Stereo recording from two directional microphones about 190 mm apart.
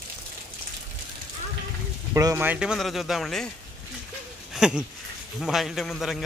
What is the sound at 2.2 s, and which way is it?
A man's voice, 15° right (ahead or behind).